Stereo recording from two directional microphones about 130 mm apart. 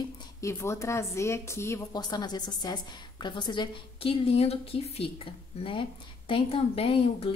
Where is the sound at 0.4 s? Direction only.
20° left (ahead or behind).